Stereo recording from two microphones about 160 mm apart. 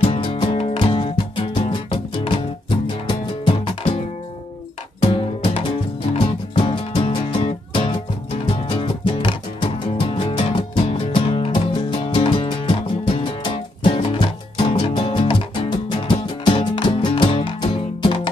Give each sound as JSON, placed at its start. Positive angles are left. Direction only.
{"t": 0.0, "sound": "music", "side_deg": 35}
{"t": 5.1, "sound": "music", "side_deg": 35}